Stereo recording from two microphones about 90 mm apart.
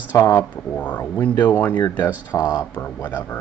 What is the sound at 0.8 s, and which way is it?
Speech, 20° left (ahead or behind).